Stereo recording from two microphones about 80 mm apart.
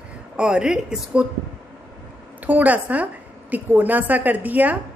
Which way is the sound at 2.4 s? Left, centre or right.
Right.